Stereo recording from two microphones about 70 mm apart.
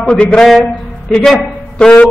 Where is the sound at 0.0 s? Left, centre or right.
Centre.